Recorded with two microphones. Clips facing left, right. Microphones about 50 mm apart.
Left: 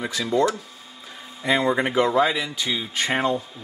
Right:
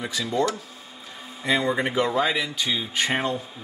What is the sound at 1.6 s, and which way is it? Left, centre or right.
Speech, left.